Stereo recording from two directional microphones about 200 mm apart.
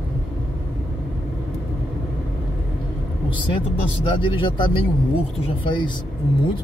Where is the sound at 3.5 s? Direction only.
25° left (ahead or behind).